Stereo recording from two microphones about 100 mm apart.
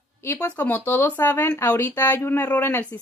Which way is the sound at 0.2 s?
25° left (ahead or behind).